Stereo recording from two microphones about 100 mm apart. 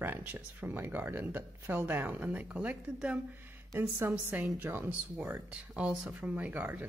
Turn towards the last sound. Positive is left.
turn(degrees=-15)  # may be behind; listen again after turning